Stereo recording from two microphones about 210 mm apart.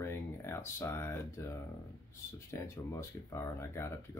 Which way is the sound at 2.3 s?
15° left (ahead or behind).